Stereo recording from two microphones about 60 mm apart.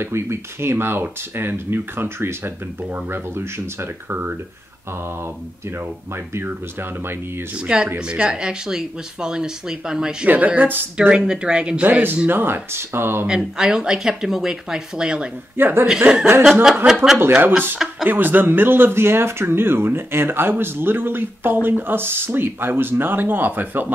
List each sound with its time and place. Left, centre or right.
0.0 s speech: right
6.3 s speech: right
7.5 s speech: centre
10.2 s speech: right
11.8 s speech: right
13.3 s speech: centre
15.5 s speech: right
16.6 s speech: centre
17.2 s speech: right